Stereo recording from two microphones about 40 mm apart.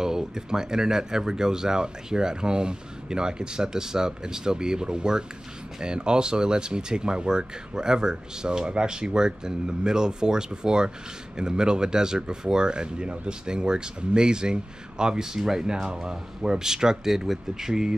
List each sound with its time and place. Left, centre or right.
0.0 s speech: centre